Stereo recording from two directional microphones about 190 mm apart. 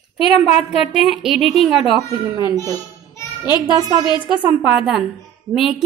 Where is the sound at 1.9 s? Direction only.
25° right (ahead or behind).